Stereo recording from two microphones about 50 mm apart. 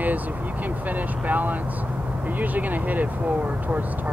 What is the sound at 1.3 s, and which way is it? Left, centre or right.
Speech, right.